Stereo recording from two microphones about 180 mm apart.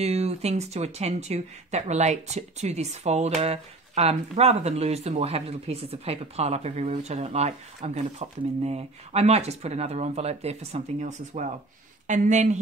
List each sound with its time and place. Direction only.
0.0 s speech: 35° right (ahead or behind)